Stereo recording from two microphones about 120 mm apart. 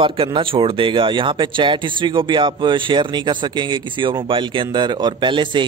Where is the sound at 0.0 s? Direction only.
45° right (ahead or behind).